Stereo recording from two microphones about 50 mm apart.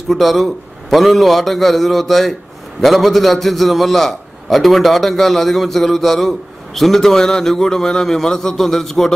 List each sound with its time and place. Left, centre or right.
0.1 s a man's voice: centre